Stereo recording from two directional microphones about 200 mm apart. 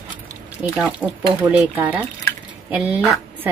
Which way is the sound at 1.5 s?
5° right (ahead or behind).